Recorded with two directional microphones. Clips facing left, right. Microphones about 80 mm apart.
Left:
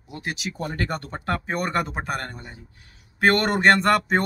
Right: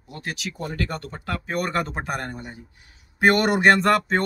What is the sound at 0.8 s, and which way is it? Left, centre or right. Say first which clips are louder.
Speech: left 3 dB; left.